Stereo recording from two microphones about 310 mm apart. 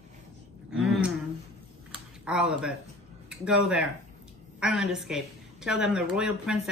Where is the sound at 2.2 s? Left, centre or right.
Centre.